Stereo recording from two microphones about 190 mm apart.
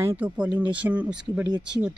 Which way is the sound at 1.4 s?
20° right (ahead or behind).